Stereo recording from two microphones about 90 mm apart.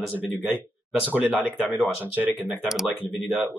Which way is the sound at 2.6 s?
5° right (ahead or behind).